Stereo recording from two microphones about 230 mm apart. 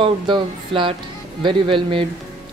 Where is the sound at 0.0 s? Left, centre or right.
Right.